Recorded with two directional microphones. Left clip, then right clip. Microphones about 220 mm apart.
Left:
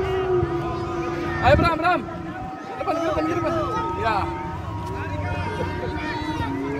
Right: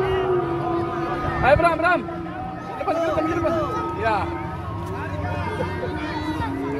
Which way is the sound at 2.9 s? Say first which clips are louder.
Right 2 dB; 50° right (ahead or behind).